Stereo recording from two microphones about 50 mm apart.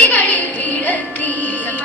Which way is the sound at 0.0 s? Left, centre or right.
Left.